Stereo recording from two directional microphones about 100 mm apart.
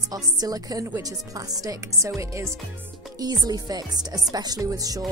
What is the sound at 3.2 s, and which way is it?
Speech, 40° right (ahead or behind).